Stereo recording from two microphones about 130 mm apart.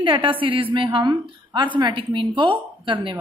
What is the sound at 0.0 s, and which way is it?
A woman's voice, 40° right (ahead or behind).